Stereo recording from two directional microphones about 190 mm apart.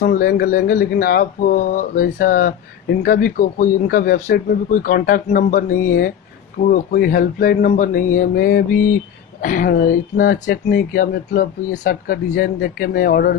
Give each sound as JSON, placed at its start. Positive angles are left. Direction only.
{"t": 0.0, "sound": "speech", "side_deg": 50}